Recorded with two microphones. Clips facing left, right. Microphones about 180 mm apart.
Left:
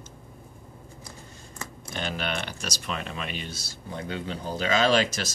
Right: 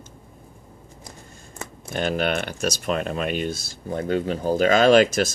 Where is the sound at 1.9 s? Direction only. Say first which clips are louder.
Right 8 dB; 50° right (ahead or behind).